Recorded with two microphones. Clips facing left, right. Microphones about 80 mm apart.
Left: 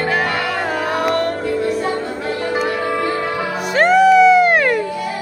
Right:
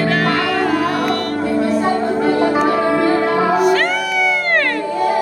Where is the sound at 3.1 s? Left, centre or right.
Right.